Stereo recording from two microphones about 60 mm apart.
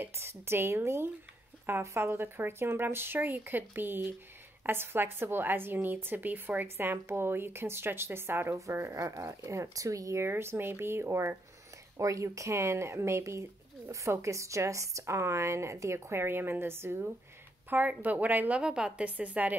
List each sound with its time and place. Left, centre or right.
0.0 s speech: right
6.8 s speech: right
8.5 s speech: right
10.2 s speech: right
12.0 s speech: right
17.6 s speech: right
18.6 s speech: centre